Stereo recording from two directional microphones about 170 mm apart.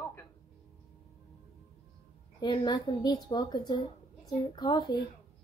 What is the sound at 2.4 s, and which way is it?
A woman's voice, 25° left (ahead or behind).